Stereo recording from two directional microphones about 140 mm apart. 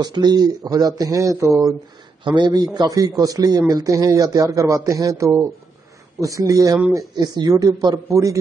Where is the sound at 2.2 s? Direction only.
35° right (ahead or behind).